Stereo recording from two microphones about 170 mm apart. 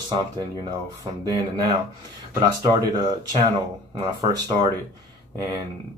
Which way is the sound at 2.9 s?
25° right (ahead or behind).